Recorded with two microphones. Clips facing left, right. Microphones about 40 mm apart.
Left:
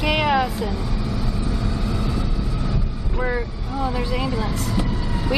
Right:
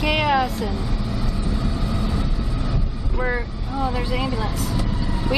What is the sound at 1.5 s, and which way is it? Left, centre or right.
Vehicle, centre.